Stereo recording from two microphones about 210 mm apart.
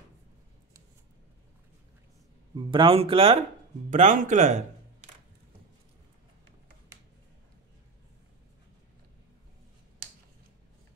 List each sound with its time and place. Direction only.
2.5 s speech: 25° right (ahead or behind)